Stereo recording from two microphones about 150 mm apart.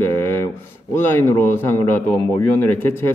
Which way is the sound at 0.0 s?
15° left (ahead or behind).